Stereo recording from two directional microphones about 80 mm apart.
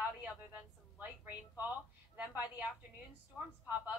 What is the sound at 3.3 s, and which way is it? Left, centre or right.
Speech, centre.